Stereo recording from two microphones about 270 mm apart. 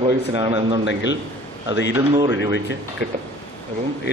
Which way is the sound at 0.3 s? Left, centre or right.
Centre.